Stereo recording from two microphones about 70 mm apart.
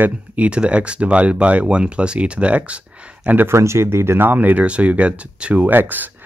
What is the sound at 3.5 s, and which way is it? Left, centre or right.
Speech, right.